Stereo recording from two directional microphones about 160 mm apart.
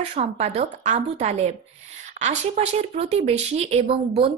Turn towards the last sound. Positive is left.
turn(degrees=-40)  # may be behind; listen again after turning